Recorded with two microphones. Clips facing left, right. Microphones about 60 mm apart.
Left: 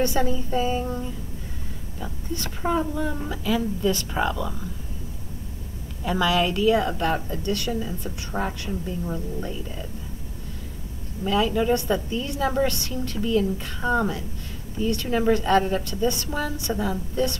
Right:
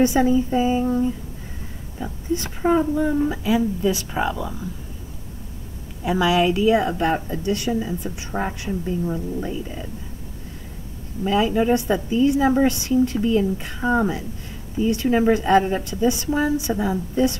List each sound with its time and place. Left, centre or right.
0.0 s a woman's voice: centre
6.0 s a woman's voice: centre
11.2 s a woman's voice: centre